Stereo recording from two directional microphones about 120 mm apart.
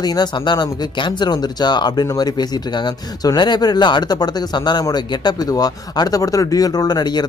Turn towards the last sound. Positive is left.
turn(degrees=35)  # may be behind; listen again after turning